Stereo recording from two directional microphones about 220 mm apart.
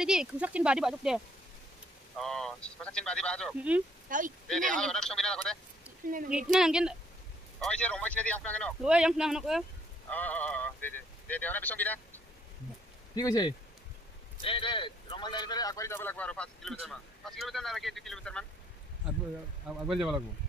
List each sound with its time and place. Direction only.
0.0 s speech: 5° right (ahead or behind)
4.1 s speech: 35° right (ahead or behind)
4.7 s speech: 5° left (ahead or behind)
6.0 s speech: 40° right (ahead or behind)
6.3 s speech: 5° right (ahead or behind)
19.9 s speech: centre (ahead or behind)